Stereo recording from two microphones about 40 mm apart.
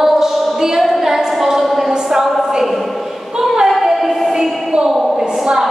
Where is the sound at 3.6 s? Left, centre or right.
Centre.